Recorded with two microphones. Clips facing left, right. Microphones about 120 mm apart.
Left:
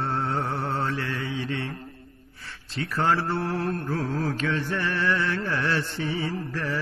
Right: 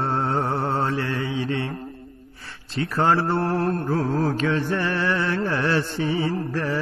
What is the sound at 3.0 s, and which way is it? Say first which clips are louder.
Mantra: right 4 dB; 40° right (ahead or behind).